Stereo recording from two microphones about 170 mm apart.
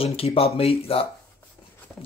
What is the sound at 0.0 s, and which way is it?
Speech, 35° left (ahead or behind).